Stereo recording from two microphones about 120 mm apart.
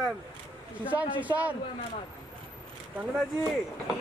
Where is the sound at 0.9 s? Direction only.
10° right (ahead or behind).